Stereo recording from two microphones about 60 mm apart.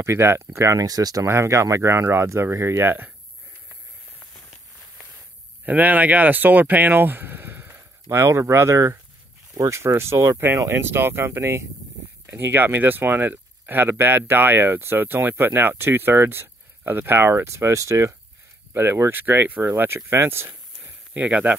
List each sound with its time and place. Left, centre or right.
0.0 s speech: right
0.8 s speech: right
1.3 s speech: right
5.7 s speech: right
10.7 s speech: right
18.7 s speech: right
20.1 s speech: right